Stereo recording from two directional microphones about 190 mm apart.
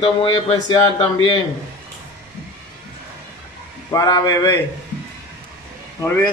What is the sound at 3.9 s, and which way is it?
Speech, 20° left (ahead or behind).